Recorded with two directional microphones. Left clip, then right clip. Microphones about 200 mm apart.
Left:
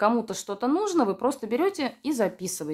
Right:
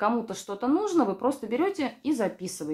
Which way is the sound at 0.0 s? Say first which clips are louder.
Left 3 dB; 50° left (ahead or behind).